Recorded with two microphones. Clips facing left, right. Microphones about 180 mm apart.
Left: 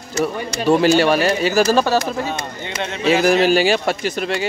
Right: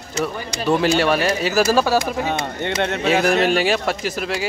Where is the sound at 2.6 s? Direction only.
60° right (ahead or behind).